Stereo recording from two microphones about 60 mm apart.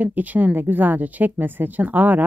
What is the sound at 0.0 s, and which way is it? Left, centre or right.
Speech, right.